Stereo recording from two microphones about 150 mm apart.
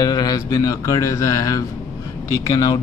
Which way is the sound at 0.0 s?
25° left (ahead or behind).